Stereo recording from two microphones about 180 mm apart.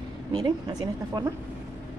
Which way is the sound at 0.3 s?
20° right (ahead or behind).